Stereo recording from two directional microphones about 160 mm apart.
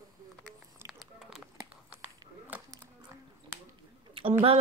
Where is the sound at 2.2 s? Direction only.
25° right (ahead or behind).